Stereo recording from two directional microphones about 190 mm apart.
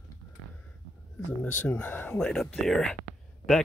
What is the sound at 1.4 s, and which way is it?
Speech, 10° left (ahead or behind).